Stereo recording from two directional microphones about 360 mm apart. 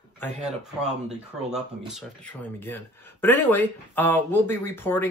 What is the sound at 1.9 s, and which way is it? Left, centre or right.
Speech, centre.